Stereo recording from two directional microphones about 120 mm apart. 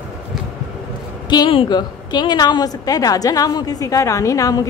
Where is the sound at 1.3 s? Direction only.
40° left (ahead or behind).